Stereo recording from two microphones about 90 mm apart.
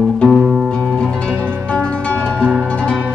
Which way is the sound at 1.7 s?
10° left (ahead or behind).